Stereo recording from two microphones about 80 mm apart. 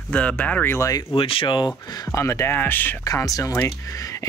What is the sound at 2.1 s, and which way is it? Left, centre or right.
Speech, left.